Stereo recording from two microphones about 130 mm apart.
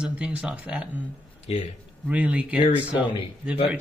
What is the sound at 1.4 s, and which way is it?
Speech, 50° left (ahead or behind).